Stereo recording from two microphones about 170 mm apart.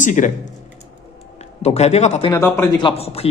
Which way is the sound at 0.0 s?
50° left (ahead or behind).